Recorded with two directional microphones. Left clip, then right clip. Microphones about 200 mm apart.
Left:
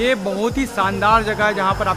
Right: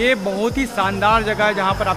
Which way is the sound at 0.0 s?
Centre (ahead or behind).